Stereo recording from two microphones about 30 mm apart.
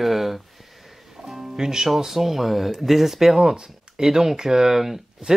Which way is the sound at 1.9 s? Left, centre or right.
Centre.